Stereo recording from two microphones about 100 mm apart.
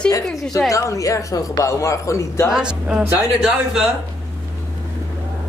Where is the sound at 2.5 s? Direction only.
10° right (ahead or behind).